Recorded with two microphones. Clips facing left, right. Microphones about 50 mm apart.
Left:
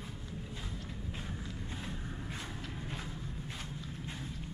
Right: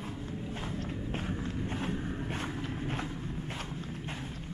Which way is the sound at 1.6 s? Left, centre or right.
Right.